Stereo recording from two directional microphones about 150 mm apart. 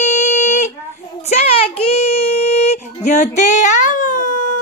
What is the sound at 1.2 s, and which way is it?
Child singing, 45° left (ahead or behind).